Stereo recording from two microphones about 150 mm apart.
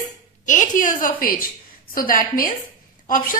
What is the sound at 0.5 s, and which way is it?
A woman's voice, 60° left (ahead or behind).